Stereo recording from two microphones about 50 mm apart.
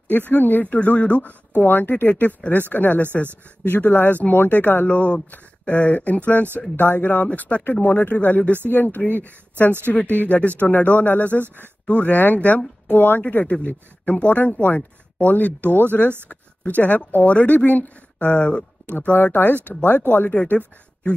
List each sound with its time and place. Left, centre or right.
0.1 s speech: left
4.8 s speech: left
11.4 s speech: right
11.8 s speech: left
19.1 s speech: left